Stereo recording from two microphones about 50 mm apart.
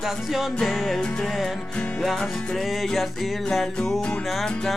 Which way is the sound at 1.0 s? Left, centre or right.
Centre.